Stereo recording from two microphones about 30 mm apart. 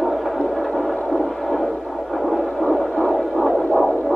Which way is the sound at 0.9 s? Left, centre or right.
Left.